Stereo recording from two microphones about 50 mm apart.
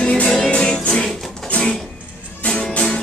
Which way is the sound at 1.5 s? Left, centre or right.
Left.